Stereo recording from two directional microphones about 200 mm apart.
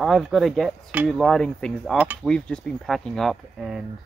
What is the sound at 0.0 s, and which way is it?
Speech, centre (ahead or behind).